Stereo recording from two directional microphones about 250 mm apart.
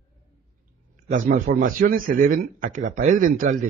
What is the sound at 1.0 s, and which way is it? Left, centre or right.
A man's voice, right.